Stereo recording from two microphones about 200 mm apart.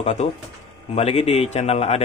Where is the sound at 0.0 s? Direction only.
30° left (ahead or behind).